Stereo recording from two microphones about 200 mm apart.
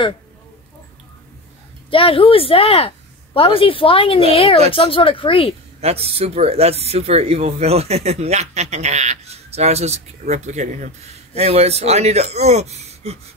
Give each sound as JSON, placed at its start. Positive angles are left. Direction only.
{"t": 1.9, "sound": "a woman's voice", "side_deg": 25}
{"t": 5.8, "sound": "speech", "side_deg": -30}